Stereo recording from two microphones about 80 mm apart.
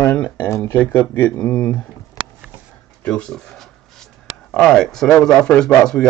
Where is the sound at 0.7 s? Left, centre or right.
Left.